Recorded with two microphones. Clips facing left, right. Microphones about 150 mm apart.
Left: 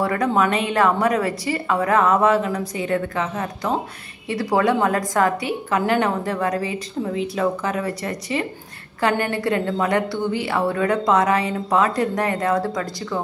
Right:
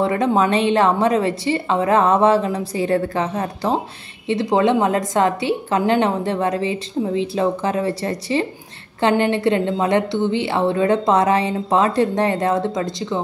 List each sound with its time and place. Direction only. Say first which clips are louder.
0.0 s a woman's voice: right 2 dB; 25° right (ahead or behind)
4.3 s a woman's voice: right 3 dB; 20° right (ahead or behind)